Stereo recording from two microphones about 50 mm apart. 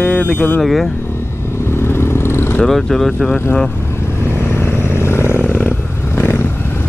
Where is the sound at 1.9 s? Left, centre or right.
Left.